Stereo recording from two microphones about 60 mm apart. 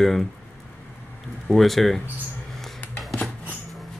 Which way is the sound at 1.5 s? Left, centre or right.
Centre.